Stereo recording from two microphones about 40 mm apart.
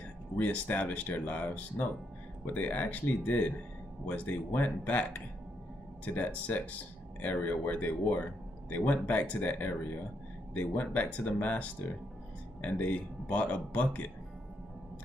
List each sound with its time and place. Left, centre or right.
0.4 s speech: left
6.0 s speech: left